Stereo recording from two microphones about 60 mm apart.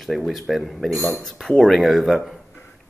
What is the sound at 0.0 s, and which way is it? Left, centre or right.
Speech, centre.